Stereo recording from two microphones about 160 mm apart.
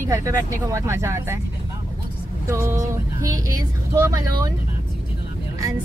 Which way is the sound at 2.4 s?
20° right (ahead or behind).